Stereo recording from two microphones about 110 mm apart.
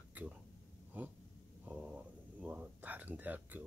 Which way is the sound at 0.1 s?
15° right (ahead or behind).